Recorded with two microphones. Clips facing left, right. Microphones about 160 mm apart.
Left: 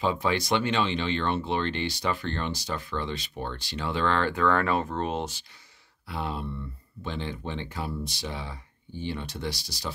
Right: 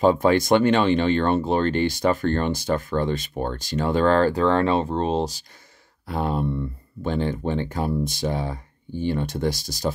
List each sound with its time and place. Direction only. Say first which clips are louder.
0.0 s speech: right 9 dB; 45° right (ahead or behind)
6.0 s speech: right 8 dB; 45° right (ahead or behind)